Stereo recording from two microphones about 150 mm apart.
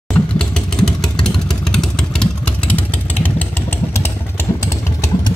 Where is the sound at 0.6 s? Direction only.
5° left (ahead or behind).